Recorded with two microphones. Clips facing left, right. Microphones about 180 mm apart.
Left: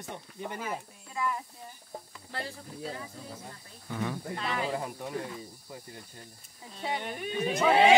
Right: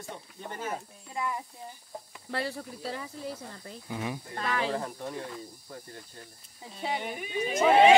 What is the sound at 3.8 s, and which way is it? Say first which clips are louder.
Speech: left 1 dB; 15° right (ahead or behind).